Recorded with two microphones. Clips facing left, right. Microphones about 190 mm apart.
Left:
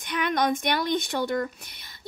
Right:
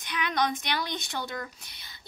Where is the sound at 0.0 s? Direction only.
50° left (ahead or behind).